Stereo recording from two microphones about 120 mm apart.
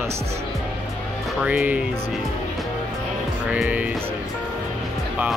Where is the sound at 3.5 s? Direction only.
10° right (ahead or behind).